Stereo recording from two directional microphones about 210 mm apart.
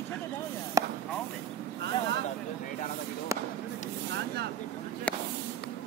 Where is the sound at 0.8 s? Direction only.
15° right (ahead or behind).